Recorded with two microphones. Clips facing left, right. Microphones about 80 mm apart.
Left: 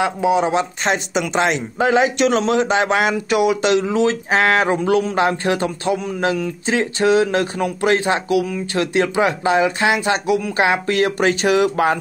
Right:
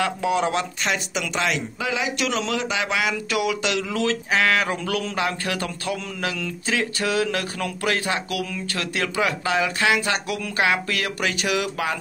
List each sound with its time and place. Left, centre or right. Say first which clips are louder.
0.0 s speech: left 5 dB; left
0.8 s speech: left 6 dB; left
2.1 s speech: left 9 dB; left
3.3 s speech: left 8 dB; left